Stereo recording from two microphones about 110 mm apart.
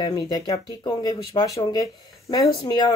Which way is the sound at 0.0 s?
35° left (ahead or behind).